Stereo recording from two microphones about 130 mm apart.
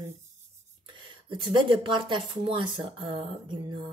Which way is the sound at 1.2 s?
35° right (ahead or behind).